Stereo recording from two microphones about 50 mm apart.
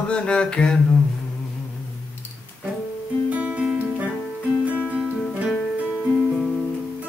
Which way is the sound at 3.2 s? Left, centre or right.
Right.